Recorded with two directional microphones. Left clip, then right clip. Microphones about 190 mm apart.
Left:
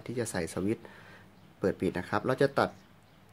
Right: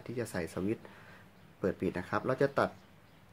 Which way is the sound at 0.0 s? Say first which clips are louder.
Left 3 dB; 15° left (ahead or behind).